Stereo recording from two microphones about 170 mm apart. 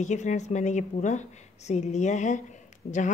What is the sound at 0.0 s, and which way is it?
A woman's voice, 45° left (ahead or behind).